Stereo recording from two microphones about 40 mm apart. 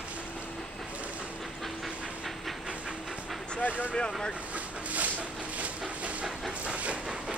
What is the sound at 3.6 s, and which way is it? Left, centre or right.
Vehicle, left.